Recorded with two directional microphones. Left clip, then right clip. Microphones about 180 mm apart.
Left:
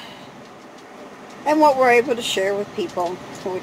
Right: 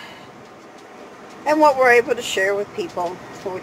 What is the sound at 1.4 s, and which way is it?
Speech, 5° left (ahead or behind).